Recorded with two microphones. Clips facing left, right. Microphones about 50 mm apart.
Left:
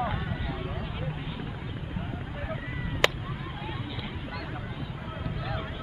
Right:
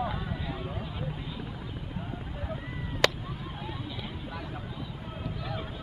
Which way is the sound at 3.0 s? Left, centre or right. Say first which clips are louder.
Left 1 dB; left.